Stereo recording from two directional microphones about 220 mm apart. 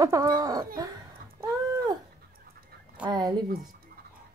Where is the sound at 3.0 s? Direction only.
20° right (ahead or behind).